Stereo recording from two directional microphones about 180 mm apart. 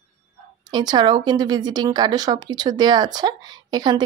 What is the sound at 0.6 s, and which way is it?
A woman's voice, 25° right (ahead or behind).